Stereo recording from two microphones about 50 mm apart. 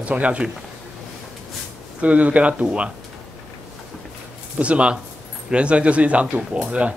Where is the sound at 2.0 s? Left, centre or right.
Right.